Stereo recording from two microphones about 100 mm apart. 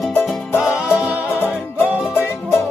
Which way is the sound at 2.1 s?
25° left (ahead or behind).